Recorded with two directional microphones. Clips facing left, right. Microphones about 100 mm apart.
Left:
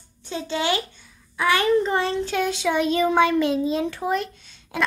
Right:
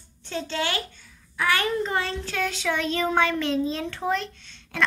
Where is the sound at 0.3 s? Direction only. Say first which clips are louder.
Left 3 dB; 15° left (ahead or behind).